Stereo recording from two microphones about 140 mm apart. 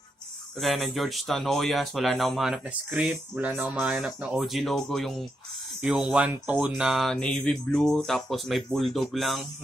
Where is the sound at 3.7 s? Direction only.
5° right (ahead or behind).